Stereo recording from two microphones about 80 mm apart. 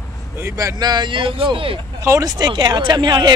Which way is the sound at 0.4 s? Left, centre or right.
Right.